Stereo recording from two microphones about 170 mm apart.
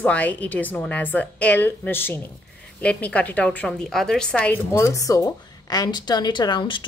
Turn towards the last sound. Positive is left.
turn(degrees=30)  # may be behind; listen again after turning